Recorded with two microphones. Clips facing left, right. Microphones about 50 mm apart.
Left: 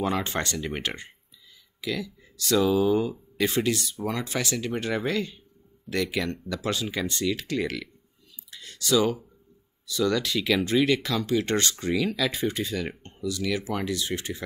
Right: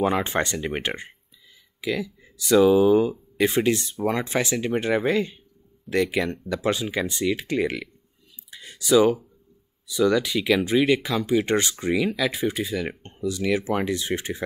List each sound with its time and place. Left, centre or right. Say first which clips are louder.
0.0 s speech: right 5 dB; right
8.5 s a sound: right 4 dB; centre
9.8 s speech: right 4 dB; centre
13.0 s speech: right 4 dB; right